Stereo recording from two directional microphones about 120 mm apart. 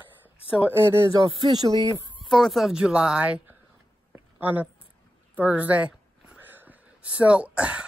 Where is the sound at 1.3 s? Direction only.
40° right (ahead or behind).